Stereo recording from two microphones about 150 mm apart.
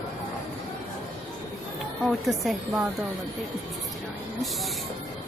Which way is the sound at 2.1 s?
Centre (ahead or behind).